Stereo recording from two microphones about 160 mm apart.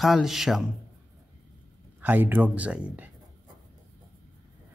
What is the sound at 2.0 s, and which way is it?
Speech, 10° right (ahead or behind).